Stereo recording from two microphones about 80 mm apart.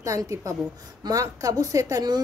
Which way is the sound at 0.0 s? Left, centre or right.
Right.